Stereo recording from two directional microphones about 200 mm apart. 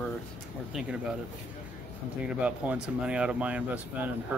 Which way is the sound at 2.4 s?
5° right (ahead or behind).